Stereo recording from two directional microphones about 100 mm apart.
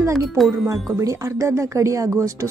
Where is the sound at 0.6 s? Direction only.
30° right (ahead or behind).